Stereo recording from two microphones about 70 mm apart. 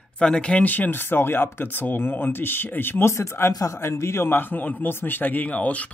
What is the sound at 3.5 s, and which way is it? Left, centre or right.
Speech, left.